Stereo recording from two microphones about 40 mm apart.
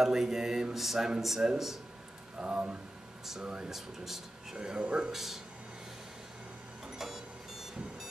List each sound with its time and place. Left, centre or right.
0.0 s speech: centre
2.4 s speech: right
3.7 s speech: centre
4.6 s speech: right
5.1 s speech: centre